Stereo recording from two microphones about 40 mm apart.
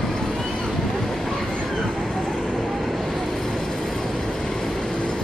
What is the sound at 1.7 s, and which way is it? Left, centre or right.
Vehicle, centre.